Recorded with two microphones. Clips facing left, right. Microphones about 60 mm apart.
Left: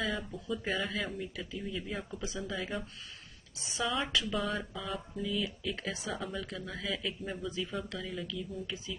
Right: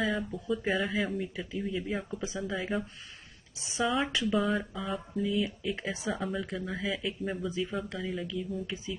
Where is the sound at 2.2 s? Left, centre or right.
Right.